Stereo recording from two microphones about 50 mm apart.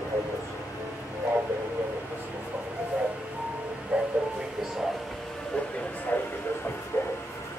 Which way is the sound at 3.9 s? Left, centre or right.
Right.